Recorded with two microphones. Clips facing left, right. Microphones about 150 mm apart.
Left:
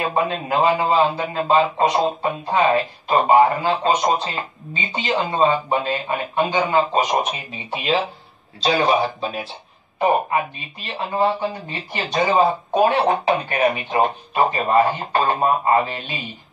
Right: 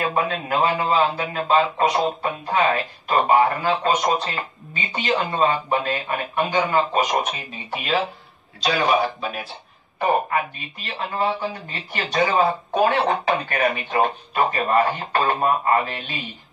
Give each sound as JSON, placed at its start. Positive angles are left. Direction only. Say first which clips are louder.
{"t": 0.0, "sound": "a man's voice", "louder": "left 2 dB", "side_deg": 20}
{"t": 9.9, "sound": "a man's voice", "louder": "left 2 dB", "side_deg": 20}